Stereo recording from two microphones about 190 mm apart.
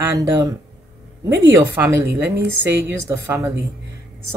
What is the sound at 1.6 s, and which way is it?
A woman's voice, 15° right (ahead or behind).